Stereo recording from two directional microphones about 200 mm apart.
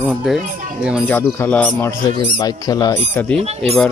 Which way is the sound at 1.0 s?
10° left (ahead or behind).